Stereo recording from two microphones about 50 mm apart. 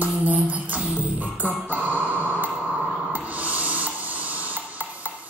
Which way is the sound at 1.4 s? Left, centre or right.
Right.